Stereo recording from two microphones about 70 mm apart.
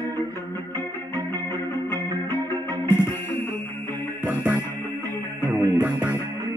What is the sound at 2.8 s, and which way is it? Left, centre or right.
Music, left.